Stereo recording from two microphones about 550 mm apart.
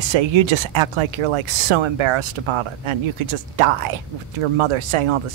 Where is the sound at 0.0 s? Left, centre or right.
Right.